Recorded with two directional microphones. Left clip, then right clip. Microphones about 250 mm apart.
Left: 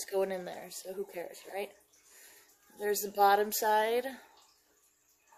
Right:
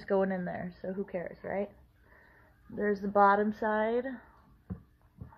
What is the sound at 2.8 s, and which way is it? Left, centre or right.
A woman's voice, left.